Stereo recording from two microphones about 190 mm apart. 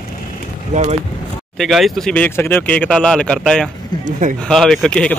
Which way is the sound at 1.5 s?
Centre (ahead or behind).